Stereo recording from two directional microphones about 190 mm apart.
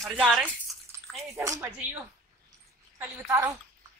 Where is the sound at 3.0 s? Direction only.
15° right (ahead or behind).